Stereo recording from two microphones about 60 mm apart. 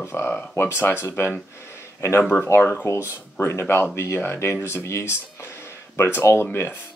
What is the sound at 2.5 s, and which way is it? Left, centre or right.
Speech, left.